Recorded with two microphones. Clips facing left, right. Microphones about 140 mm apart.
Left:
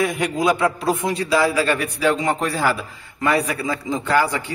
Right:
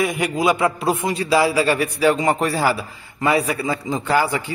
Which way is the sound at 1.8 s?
5° right (ahead or behind).